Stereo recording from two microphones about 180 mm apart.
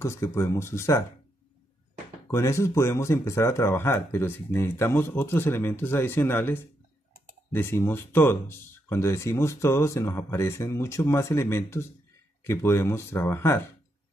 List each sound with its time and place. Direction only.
0.0 s speech: 15° left (ahead or behind)
2.3 s speech: 15° left (ahead or behind)